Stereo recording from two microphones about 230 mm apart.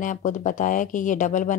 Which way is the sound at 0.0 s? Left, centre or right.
Left.